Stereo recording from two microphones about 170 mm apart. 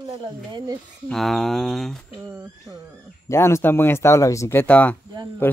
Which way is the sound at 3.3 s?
15° left (ahead or behind).